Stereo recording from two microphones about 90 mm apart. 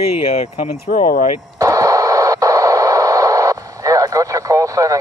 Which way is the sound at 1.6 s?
40° right (ahead or behind).